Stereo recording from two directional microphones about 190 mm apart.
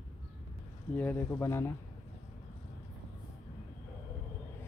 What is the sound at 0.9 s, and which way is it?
Speech, 10° left (ahead or behind).